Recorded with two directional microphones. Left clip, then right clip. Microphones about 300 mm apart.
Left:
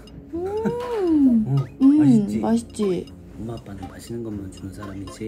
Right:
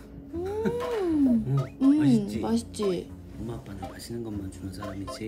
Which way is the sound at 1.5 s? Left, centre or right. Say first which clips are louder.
Left 6 dB; centre.